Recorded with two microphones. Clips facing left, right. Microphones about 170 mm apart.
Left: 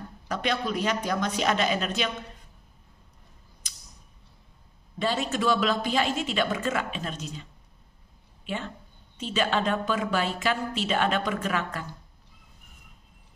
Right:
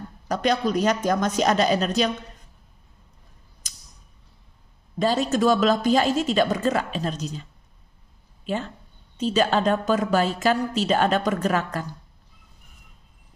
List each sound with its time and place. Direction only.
0.3 s a woman's voice: 40° right (ahead or behind)
3.6 s tick: 45° right (ahead or behind)
4.9 s a woman's voice: 40° right (ahead or behind)
8.5 s a woman's voice: 40° right (ahead or behind)